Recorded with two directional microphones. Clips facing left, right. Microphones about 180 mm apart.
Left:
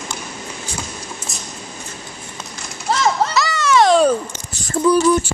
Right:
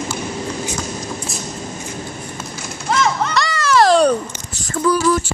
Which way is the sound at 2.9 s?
35° left (ahead or behind).